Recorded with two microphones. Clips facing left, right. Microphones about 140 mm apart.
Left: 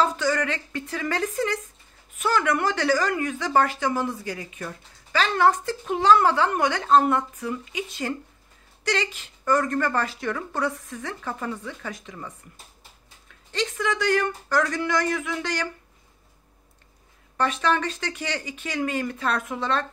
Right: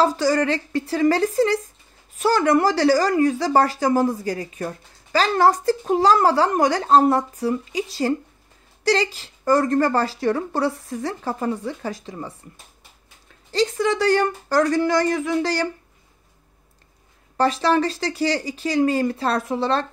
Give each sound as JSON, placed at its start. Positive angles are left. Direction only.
{"t": 0.0, "sound": "speech", "side_deg": -35}
{"t": 13.5, "sound": "speech", "side_deg": -35}
{"t": 17.4, "sound": "speech", "side_deg": -35}